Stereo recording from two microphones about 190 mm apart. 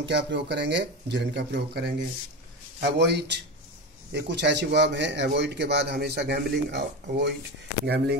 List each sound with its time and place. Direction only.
0.0 s a man's voice: 65° right (ahead or behind)